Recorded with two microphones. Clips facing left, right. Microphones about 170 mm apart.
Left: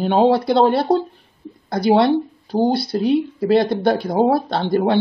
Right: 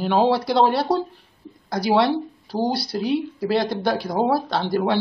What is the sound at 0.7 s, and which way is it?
Speech, 55° left (ahead or behind).